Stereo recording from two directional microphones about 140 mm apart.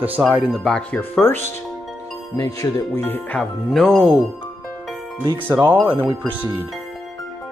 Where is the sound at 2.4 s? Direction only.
25° left (ahead or behind).